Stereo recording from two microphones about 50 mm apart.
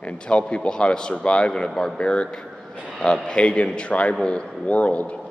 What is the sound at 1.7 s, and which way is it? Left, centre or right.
Speech, centre.